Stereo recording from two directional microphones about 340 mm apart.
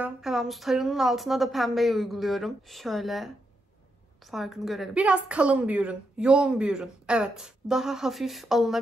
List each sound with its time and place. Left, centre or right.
0.0 s a woman's voice: centre
4.3 s a woman's voice: centre